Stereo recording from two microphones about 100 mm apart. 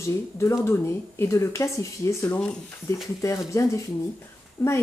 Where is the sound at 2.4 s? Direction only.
15° left (ahead or behind).